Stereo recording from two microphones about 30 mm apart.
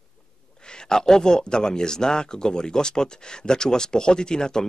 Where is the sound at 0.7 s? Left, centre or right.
Left.